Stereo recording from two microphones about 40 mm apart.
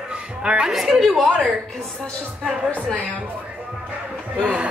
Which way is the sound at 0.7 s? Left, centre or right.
Centre.